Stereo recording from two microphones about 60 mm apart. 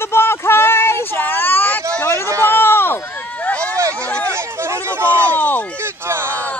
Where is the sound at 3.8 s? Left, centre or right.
Right.